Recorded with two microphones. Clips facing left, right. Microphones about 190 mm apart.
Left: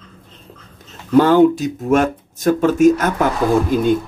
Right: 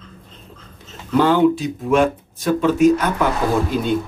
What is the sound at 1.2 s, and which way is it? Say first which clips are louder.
Speech: left 4 dB; 45° left (ahead or behind).